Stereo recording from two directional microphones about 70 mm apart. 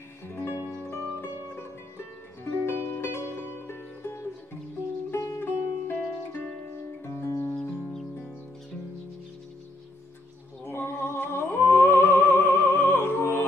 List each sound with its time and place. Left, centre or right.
0.3 s music: left
2.6 s music: left
5.1 s music: left
5.4 s music: left
7.1 s music: left
7.5 s music: centre
10.6 s music: left